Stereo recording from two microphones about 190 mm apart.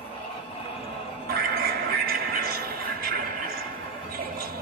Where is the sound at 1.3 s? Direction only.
55° right (ahead or behind).